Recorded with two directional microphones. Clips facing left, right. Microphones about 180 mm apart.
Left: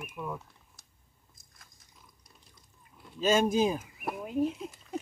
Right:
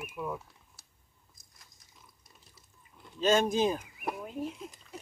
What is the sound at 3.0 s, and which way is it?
Speech, 5° left (ahead or behind).